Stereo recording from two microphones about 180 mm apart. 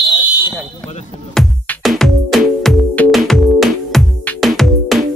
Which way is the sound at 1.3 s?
Centre (ahead or behind).